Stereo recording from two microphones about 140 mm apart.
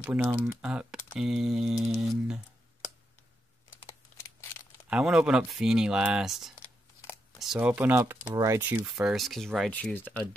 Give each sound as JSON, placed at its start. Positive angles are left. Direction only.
{"t": 0.0, "sound": "speech", "side_deg": -10}
{"t": 4.2, "sound": "crumpling", "side_deg": 20}
{"t": 4.8, "sound": "speech", "side_deg": -5}
{"t": 8.6, "sound": "speech", "side_deg": -10}